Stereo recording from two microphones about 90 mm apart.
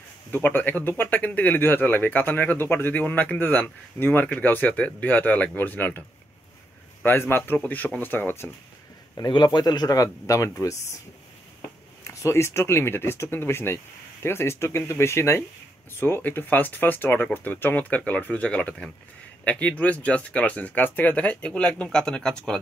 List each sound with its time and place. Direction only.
0.3 s speech: 20° left (ahead or behind)
9.3 s speech: 55° left (ahead or behind); by 10.8 s 35° left (ahead or behind)
12.0 s speech: 30° left (ahead or behind); by 22.4 s 10° left (ahead or behind)